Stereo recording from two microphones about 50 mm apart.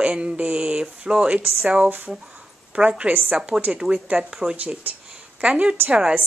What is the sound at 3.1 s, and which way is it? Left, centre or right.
Speech, right.